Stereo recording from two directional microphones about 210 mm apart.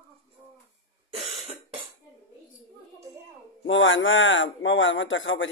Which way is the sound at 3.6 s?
65° left (ahead or behind).